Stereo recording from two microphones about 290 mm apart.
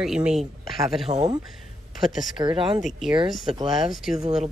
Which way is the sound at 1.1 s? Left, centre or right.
Right.